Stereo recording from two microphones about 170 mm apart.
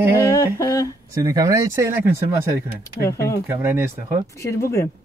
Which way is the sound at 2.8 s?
15° left (ahead or behind).